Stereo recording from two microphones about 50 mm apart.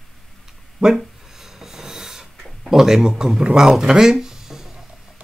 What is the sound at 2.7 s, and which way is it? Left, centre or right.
Speech, centre.